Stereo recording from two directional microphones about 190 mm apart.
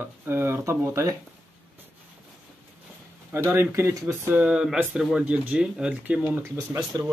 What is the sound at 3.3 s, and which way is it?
Speech, 10° right (ahead or behind).